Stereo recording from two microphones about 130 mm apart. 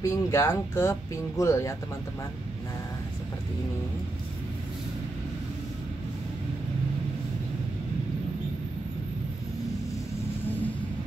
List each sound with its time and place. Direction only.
0.0 s speech: 20° left (ahead or behind)